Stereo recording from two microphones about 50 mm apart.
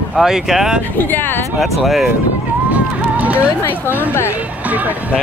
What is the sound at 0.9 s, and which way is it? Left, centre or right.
Speech, left.